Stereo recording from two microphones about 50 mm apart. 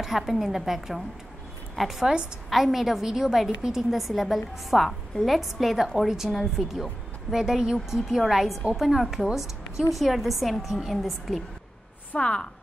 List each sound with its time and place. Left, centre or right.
0.0 s a woman's voice: centre
12.2 s a woman's voice: centre